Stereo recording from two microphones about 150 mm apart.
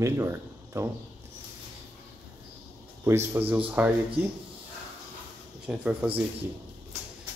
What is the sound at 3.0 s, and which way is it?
Speech, 15° right (ahead or behind).